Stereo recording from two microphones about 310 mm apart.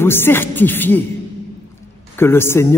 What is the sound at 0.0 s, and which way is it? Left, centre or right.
A man's voice, centre.